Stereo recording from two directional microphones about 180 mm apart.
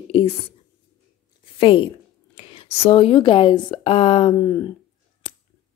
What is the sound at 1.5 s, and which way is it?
Speech, 30° left (ahead or behind).